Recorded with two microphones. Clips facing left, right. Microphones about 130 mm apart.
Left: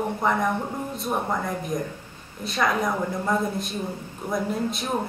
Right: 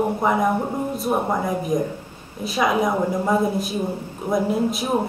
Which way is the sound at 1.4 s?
5° right (ahead or behind).